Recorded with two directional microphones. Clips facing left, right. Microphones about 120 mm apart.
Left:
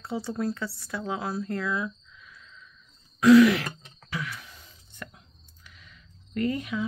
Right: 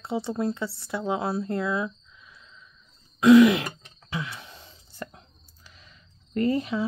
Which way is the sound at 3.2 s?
20° right (ahead or behind).